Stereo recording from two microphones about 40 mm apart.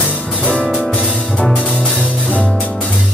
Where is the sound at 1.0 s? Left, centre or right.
Centre.